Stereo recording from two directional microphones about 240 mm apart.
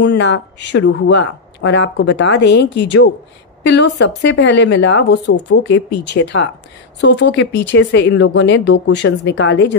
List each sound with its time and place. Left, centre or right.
0.0 s speech: left